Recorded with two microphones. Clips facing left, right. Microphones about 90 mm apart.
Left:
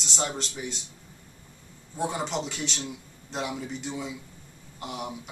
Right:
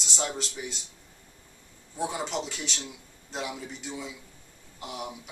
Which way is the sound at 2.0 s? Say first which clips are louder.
Left 2 dB; centre (ahead or behind).